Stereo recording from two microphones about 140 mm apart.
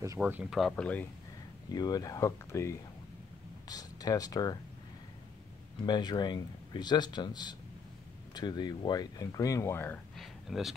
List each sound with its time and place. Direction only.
0.2 s speech: 5° right (ahead or behind); by 1.0 s 10° left (ahead or behind)
1.7 s speech: 30° left (ahead or behind)
5.9 s speech: 30° left (ahead or behind)
10.1 s a sound: centre (ahead or behind)